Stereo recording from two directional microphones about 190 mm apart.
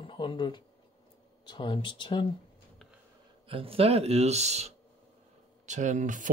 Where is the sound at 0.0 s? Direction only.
25° left (ahead or behind).